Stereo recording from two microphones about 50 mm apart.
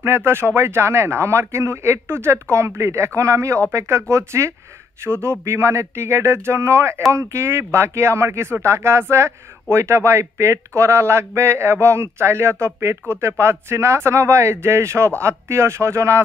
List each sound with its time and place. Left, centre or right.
0.0 s speech: right
2.5 s speech: right
5.0 s speech: right